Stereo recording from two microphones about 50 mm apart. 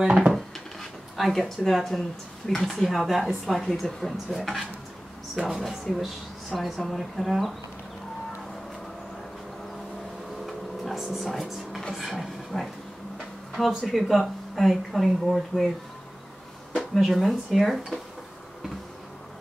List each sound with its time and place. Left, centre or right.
0.0 s a sound: centre
0.3 s dishes: centre
1.6 s a woman's voice: centre
10.4 s a sound: centre
13.5 s a woman's voice: centre
16.7 s a woman's voice: centre